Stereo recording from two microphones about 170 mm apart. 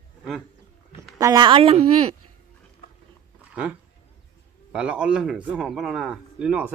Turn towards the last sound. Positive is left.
turn(degrees=-5)  # may be behind; listen again after turning